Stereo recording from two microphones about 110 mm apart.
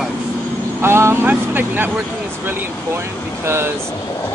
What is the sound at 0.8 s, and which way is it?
Speech, 25° right (ahead or behind).